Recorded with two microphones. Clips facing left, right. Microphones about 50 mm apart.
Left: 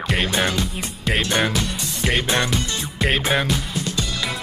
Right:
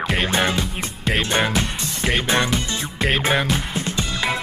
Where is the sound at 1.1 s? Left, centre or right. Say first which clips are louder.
Even; centre.